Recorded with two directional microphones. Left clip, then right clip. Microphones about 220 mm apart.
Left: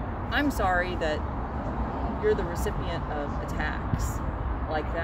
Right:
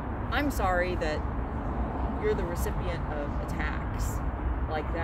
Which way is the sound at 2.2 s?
10° left (ahead or behind).